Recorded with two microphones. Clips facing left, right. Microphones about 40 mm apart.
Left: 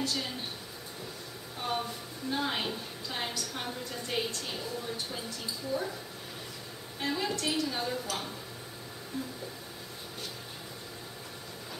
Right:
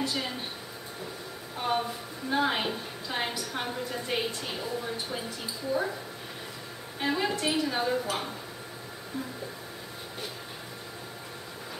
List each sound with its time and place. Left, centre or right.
0.0 s speech: centre
1.6 s a woman's voice: centre
7.0 s a woman's voice: centre